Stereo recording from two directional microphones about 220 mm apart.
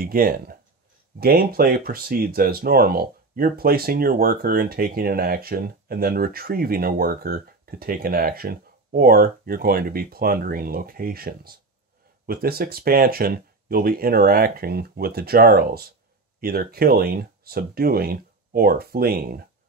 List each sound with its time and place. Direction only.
0.0 s speech: 40° right (ahead or behind)